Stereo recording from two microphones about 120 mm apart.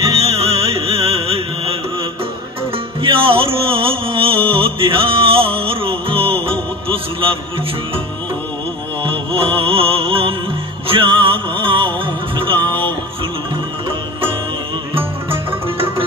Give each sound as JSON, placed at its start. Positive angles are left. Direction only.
{"t": 0.1, "sound": "music", "side_deg": -55}
{"t": 3.0, "sound": "music", "side_deg": -45}
{"t": 9.0, "sound": "music", "side_deg": -50}